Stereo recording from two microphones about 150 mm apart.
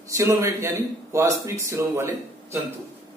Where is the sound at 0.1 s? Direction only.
20° right (ahead or behind).